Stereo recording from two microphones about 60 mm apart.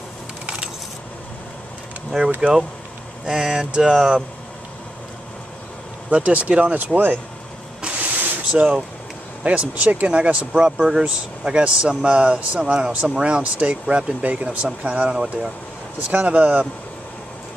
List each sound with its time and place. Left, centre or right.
2.4 s speech: right
3.3 s speech: centre
6.0 s speech: right
8.5 s speech: centre
16.1 s speech: right